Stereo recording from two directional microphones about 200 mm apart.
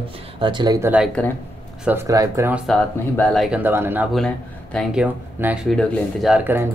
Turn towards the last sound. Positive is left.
turn(degrees=-10)  # may be behind; listen again after turning